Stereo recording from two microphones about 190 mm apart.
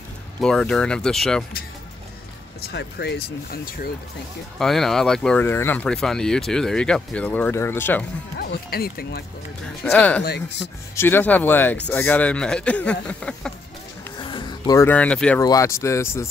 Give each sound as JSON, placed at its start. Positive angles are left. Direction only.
{"t": 0.4, "sound": "speech", "side_deg": 5}
{"t": 2.6, "sound": "speech", "side_deg": 60}
{"t": 4.6, "sound": "speech", "side_deg": 0}
{"t": 8.4, "sound": "speech", "side_deg": 55}
{"t": 9.8, "sound": "speech", "side_deg": 5}
{"t": 10.2, "sound": "speech", "side_deg": 60}
{"t": 11.0, "sound": "speech", "side_deg": 10}
{"t": 14.1, "sound": "music", "side_deg": 25}
{"t": 14.9, "sound": "speech", "side_deg": 5}
{"t": 15.4, "sound": "speech", "side_deg": 15}